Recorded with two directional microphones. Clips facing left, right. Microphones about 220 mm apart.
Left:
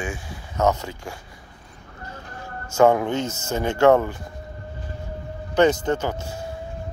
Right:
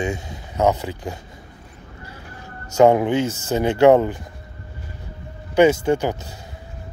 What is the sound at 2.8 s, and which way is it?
Speech, 20° right (ahead or behind).